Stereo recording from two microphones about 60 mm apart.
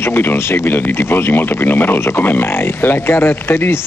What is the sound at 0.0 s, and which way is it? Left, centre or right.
Speech, left.